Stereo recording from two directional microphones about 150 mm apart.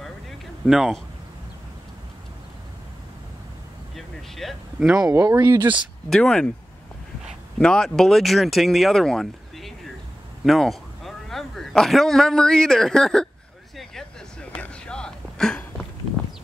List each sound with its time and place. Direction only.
0.7 s speech: 5° right (ahead or behind)
3.9 s a sound: centre (ahead or behind)
5.1 s speech: 15° right (ahead or behind)
6.0 s speech: 5° left (ahead or behind)
7.5 s a man's voice: 5° left (ahead or behind)
13.7 s a sound: 5° left (ahead or behind)